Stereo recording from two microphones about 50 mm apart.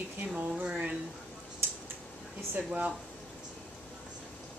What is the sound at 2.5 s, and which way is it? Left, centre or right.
Speech, right.